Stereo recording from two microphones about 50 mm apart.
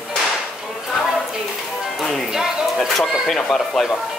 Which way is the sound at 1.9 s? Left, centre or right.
Centre.